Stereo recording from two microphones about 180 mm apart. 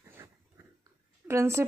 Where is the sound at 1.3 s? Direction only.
15° right (ahead or behind).